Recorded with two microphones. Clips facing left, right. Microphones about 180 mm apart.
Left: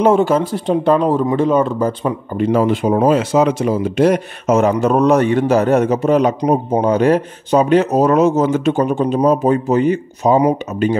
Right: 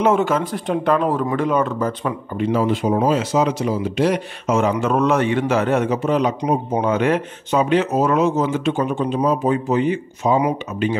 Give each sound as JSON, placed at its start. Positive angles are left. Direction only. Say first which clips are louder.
{"t": 0.0, "sound": "a man's voice", "louder": "left 4 dB", "side_deg": 35}
{"t": 2.3, "sound": "speech", "louder": "left 4 dB", "side_deg": 50}